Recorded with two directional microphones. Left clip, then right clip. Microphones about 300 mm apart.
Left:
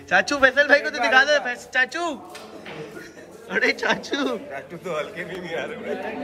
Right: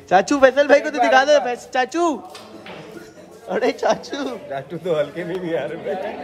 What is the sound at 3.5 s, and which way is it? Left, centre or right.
Speech, centre.